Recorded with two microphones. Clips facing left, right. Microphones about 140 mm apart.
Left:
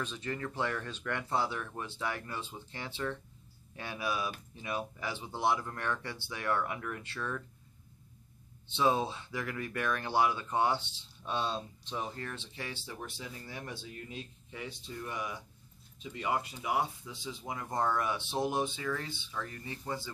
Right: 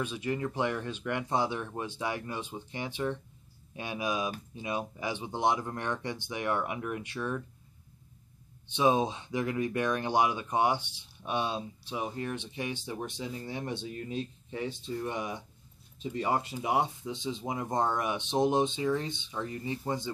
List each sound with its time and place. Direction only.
0.0 s speech: 15° right (ahead or behind)
8.6 s speech: 15° right (ahead or behind)
16.0 s speech: 35° right (ahead or behind)